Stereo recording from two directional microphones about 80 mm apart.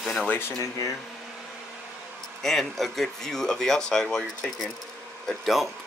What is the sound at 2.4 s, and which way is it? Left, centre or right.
Speech, centre.